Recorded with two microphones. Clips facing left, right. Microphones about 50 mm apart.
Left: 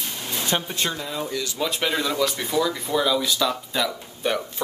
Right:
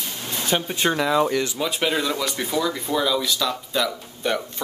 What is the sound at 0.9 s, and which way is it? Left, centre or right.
Speech, right.